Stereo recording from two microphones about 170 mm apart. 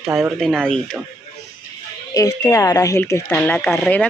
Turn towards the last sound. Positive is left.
turn(degrees=5)  # may be behind; listen again after turning